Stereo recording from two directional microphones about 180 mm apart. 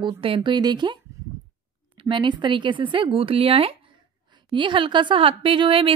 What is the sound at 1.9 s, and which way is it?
A woman's voice, 25° right (ahead or behind).